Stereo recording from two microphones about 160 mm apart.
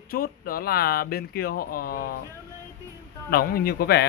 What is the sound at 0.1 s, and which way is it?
Speech, 65° left (ahead or behind).